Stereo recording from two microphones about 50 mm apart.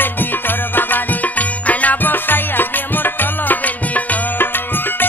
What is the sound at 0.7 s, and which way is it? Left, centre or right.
Music, left.